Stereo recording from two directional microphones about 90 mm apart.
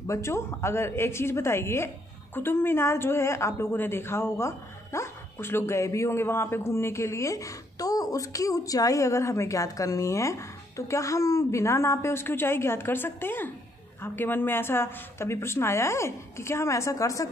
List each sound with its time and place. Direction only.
0.0 s a woman's voice: 35° left (ahead or behind)